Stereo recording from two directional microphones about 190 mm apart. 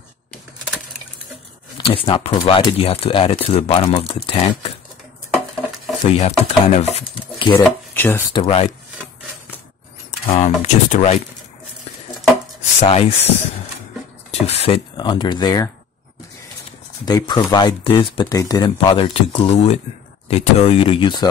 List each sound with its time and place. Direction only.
1.8 s speech: 30° left (ahead or behind)
6.0 s speech: 35° left (ahead or behind)
7.6 s stir: 10° left (ahead or behind)
8.3 s speech: 30° left (ahead or behind)
10.2 s speech: 30° left (ahead or behind)
12.8 s speech: 35° left (ahead or behind)
14.4 s speech: 35° left (ahead or behind)
17.0 s speech: 20° left (ahead or behind)